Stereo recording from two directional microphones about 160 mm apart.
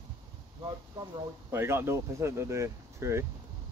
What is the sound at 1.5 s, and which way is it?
Speech, 15° right (ahead or behind).